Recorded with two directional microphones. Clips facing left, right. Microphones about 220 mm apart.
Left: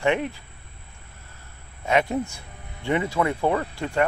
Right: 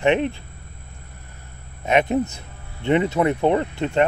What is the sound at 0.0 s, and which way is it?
Speech, 20° right (ahead or behind).